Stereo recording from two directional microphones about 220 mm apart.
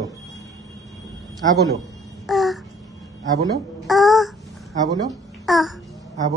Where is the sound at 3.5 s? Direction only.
Centre (ahead or behind).